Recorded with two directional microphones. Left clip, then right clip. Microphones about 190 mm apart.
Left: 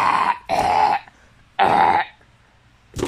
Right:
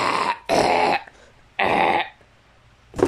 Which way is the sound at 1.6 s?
5° right (ahead or behind).